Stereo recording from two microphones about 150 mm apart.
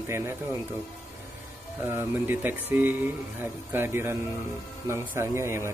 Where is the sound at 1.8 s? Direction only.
15° right (ahead or behind).